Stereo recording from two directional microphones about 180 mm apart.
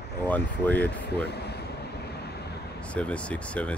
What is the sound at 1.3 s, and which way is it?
Vehicle, 65° left (ahead or behind).